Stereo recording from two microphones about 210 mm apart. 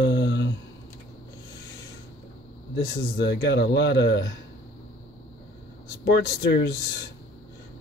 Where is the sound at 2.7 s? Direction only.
50° left (ahead or behind).